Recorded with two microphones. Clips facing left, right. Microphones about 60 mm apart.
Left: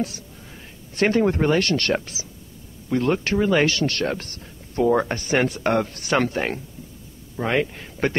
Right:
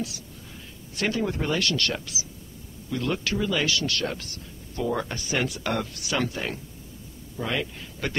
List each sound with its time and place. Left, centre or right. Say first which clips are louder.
0.9 s speech: left 8 dB; left